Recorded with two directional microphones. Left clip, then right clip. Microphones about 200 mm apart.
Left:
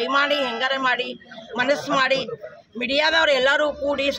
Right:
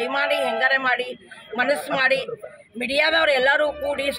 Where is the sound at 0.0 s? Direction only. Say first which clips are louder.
Left 1 dB; 5° left (ahead or behind).